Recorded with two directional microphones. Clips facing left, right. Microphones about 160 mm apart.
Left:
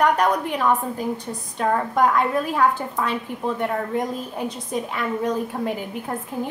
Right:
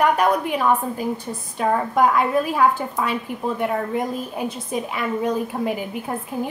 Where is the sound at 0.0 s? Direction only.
5° right (ahead or behind).